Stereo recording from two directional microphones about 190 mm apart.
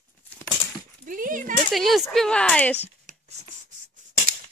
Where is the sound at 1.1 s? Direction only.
45° right (ahead or behind).